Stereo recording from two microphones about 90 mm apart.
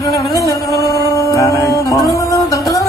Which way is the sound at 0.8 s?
40° left (ahead or behind).